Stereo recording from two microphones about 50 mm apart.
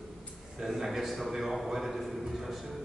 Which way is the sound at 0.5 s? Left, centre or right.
Centre.